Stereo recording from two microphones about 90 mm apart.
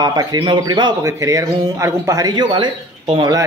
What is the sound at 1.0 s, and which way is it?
Speech, 35° right (ahead or behind).